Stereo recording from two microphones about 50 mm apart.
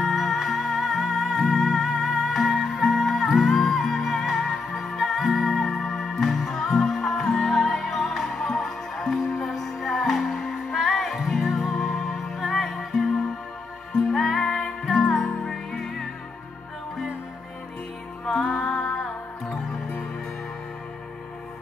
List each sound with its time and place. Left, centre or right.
0.0 s music: centre
18.2 s music: centre